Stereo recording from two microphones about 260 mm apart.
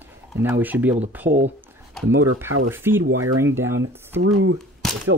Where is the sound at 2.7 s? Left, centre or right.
Centre.